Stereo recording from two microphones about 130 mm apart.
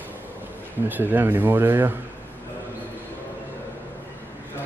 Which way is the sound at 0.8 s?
15° right (ahead or behind).